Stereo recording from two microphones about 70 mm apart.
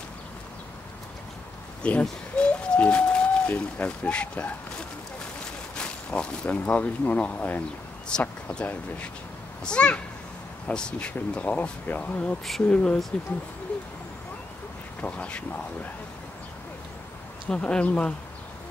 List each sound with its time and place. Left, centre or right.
1.8 s speech: centre
5.8 s speech: centre
12.6 s speech: centre
15.0 s speech: centre
17.5 s speech: centre